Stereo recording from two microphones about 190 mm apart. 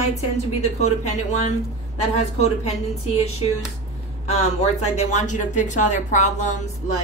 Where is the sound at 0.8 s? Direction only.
40° left (ahead or behind).